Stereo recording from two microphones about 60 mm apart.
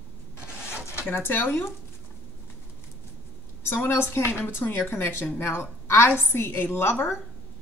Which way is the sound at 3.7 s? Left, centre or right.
Left.